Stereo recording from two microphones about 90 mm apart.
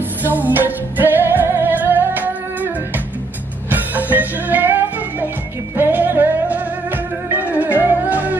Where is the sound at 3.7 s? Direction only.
20° right (ahead or behind).